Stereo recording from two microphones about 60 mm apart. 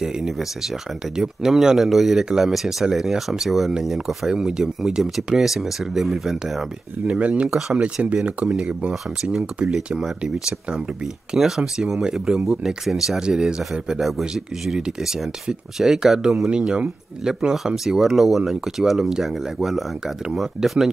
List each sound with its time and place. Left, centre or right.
0.0 s speech: centre
7.1 s speech: right
7.4 s speech: centre
7.7 s speech: right; by 20.9 s centre